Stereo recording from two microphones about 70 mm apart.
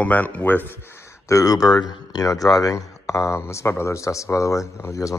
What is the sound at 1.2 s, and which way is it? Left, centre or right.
Speech, left.